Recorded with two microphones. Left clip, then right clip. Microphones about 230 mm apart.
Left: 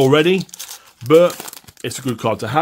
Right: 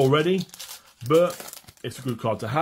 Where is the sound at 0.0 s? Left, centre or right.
Left.